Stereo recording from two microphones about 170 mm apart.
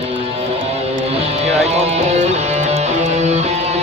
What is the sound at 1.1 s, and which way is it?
Music, 40° right (ahead or behind).